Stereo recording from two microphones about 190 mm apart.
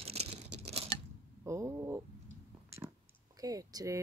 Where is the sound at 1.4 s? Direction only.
15° right (ahead or behind).